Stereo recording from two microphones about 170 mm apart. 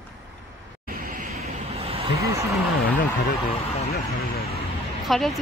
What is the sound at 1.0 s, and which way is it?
Vehicle, 55° right (ahead or behind).